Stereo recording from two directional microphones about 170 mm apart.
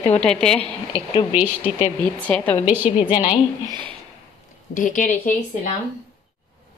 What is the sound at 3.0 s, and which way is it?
Speech, 30° left (ahead or behind).